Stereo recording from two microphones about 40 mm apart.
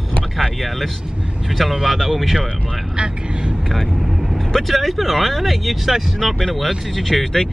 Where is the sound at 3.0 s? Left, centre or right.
Right.